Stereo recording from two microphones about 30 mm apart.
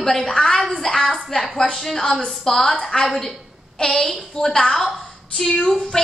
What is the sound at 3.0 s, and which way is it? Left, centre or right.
A woman's voice, centre.